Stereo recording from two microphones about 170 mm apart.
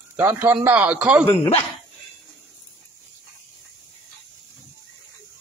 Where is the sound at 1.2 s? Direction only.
25° left (ahead or behind).